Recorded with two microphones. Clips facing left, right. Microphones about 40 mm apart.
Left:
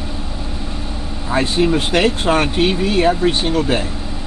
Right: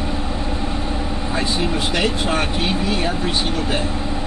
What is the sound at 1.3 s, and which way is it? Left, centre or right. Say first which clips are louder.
Speech: left 7 dB; left.